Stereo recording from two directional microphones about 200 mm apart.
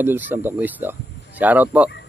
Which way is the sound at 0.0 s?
10° right (ahead or behind).